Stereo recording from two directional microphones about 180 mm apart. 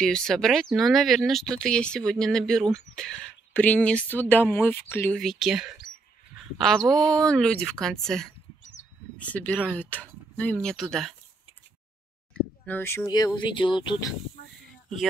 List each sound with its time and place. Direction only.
0.0 s speech: 5° left (ahead or behind)
12.6 s speech: 10° left (ahead or behind)